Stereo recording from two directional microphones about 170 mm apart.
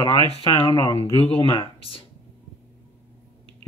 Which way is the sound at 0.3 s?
35° left (ahead or behind).